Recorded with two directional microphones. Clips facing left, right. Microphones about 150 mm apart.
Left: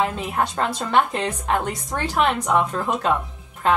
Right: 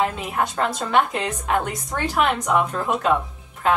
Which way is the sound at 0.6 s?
Centre (ahead or behind).